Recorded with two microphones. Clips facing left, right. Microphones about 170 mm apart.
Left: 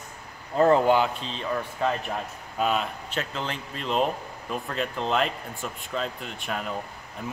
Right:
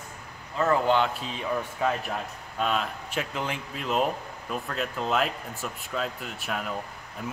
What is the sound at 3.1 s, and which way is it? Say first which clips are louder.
A man's voice: right 1 dB; 10° right (ahead or behind).